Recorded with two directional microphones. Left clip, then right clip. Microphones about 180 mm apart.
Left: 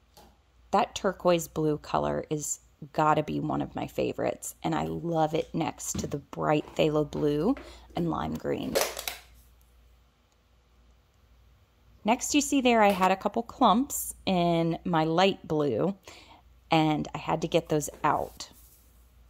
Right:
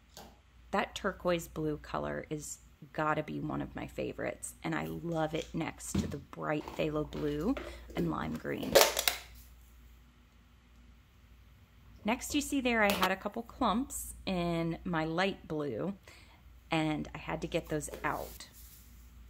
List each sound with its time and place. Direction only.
0.7 s speech: 20° left (ahead or behind)
12.0 s speech: 25° left (ahead or behind)